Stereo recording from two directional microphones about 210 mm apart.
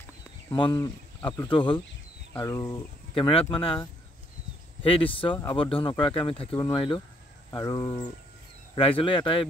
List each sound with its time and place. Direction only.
0.5 s speech: 25° left (ahead or behind)
3.2 s speech: 25° left (ahead or behind)